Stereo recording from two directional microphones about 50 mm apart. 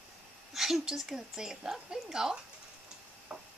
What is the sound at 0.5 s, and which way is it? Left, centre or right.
Speech, centre.